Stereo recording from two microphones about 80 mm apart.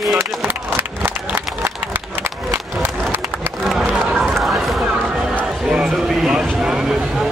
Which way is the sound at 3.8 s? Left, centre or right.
Centre.